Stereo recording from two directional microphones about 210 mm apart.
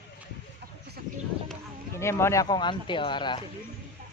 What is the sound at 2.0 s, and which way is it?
Speech, 15° left (ahead or behind).